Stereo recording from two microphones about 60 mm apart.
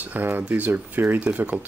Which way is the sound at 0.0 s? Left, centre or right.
Right.